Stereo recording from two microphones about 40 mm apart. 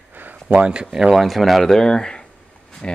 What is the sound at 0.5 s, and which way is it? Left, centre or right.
Speech, right.